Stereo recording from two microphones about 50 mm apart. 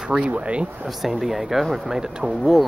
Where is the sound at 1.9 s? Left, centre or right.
Centre.